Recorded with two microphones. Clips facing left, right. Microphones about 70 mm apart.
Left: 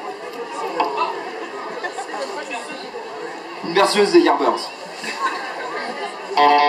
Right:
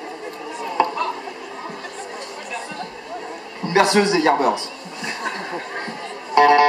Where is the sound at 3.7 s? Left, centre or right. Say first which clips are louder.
Left 3 dB; centre.